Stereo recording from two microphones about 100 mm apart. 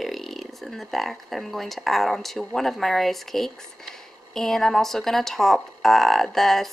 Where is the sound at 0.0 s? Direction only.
Centre (ahead or behind).